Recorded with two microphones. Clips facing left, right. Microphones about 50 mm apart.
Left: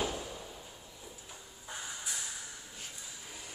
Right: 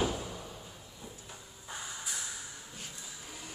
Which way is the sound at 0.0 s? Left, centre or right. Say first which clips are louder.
Right 3 dB; centre.